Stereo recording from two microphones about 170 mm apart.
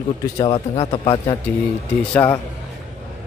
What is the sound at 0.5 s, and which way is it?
Speech, 30° left (ahead or behind).